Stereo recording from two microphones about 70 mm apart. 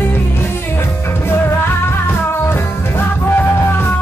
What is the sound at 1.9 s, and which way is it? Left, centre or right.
Music, left.